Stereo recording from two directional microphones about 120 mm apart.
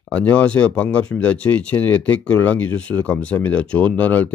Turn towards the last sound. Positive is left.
turn(degrees=15)  # may be behind; listen again after turning